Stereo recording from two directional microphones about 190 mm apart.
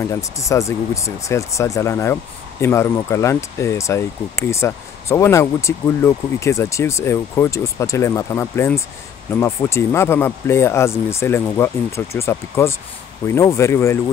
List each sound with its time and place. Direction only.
0.0 s speech: 15° left (ahead or behind)